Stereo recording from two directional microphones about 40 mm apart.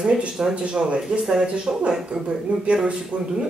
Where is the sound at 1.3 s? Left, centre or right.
Centre.